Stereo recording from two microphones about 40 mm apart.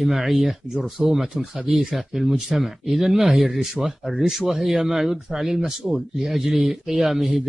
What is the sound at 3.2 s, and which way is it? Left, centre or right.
A man's voice, centre.